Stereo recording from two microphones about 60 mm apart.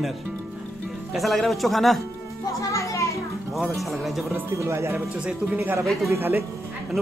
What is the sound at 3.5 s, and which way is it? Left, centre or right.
Speech, centre.